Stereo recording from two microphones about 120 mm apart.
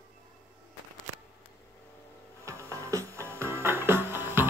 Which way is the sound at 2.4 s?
25° right (ahead or behind).